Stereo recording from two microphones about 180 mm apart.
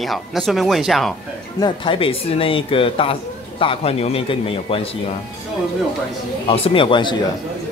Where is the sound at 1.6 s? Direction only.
30° left (ahead or behind).